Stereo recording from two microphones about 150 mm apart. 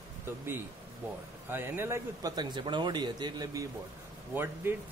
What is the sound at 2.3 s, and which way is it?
Speech, 30° right (ahead or behind).